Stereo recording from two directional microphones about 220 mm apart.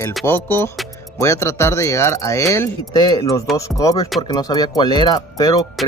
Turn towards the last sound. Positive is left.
turn(degrees=15)  # may be behind; listen again after turning